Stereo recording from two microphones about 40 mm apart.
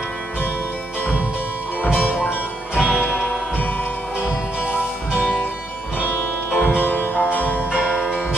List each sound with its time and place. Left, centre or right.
2.8 s music: left
5.9 s music: left
6.5 s music: left